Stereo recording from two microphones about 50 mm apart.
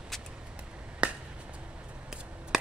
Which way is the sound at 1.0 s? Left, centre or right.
Right.